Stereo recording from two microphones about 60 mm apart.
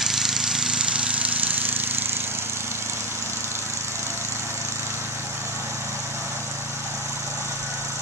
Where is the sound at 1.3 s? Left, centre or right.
Right.